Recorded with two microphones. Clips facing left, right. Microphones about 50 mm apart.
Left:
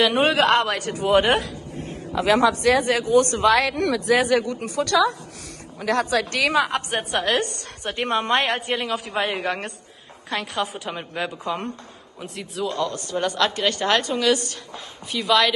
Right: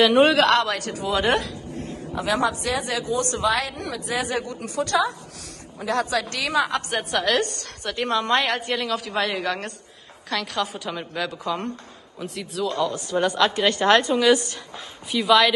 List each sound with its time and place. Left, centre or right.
0.0 s speech: centre
0.6 s a woman's voice: left
2.1 s speech: left
6.7 s speech: left
7.1 s a woman's voice: centre
7.8 s a woman's voice: left
8.7 s a woman's voice: centre
9.3 s speech: left
10.6 s a woman's voice: centre
12.2 s speech: centre
13.4 s a woman's voice: centre
15.0 s speech: centre